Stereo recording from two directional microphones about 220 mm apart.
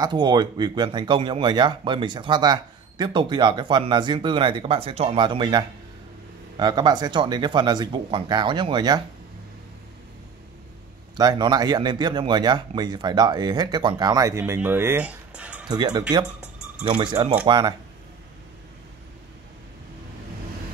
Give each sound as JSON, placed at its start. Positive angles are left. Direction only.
{"t": 0.0, "sound": "speech", "side_deg": -20}
{"t": 11.1, "sound": "speech", "side_deg": -20}
{"t": 15.7, "sound": "speech", "side_deg": -20}